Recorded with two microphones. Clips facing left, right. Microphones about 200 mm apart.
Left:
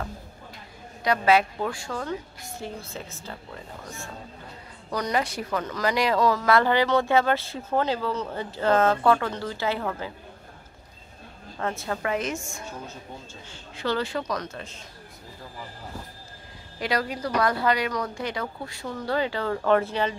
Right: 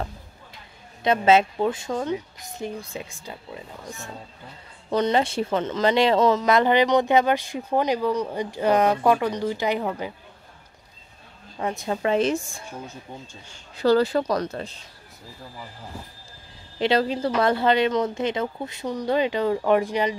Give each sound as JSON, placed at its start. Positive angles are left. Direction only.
{"t": 1.0, "sound": "speech", "side_deg": -25}
{"t": 11.5, "sound": "speech", "side_deg": -15}
{"t": 13.7, "sound": "speech", "side_deg": -35}
{"t": 16.7, "sound": "speech", "side_deg": -25}